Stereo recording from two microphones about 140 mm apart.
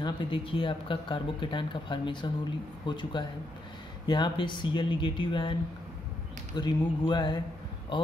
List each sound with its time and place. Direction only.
0.0 s speech: 35° left (ahead or behind)
6.5 s speech: 35° left (ahead or behind)